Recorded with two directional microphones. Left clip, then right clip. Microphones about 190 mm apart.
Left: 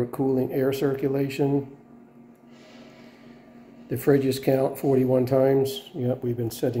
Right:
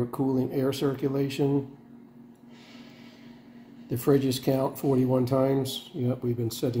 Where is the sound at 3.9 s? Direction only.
10° right (ahead or behind).